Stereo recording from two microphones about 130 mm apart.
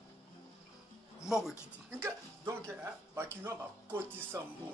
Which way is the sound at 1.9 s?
20° right (ahead or behind).